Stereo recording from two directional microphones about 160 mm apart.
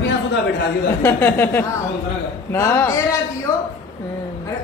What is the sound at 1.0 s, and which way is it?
A man's voice, 15° left (ahead or behind).